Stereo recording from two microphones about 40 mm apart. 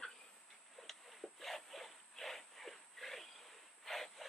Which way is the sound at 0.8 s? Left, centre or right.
Centre.